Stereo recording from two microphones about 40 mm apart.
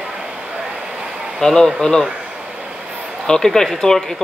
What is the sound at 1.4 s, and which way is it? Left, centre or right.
Speech, centre.